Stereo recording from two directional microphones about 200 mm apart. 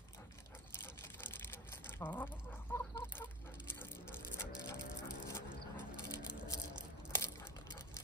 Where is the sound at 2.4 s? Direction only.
10° left (ahead or behind).